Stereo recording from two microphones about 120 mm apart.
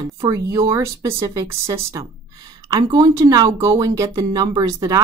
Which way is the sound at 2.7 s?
35° right (ahead or behind).